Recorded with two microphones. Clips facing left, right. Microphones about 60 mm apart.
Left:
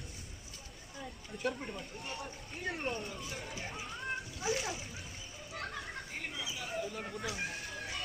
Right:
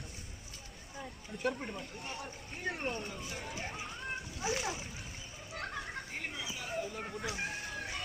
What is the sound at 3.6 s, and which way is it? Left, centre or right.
Splash, centre.